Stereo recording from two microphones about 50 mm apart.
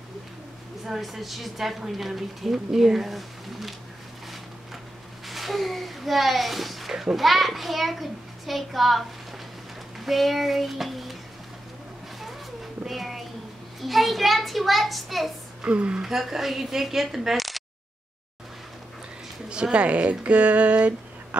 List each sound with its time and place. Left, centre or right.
0.8 s a woman's voice: centre
5.2 s a child's voice: centre
12.8 s a sound: centre
13.7 s a woman's voice: centre
15.6 s speech: right
16.0 s a woman's voice: centre
19.5 s speech: right